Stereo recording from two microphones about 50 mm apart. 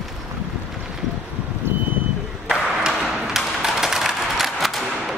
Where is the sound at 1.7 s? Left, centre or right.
Right.